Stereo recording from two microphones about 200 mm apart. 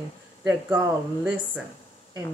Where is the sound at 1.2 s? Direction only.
5° right (ahead or behind).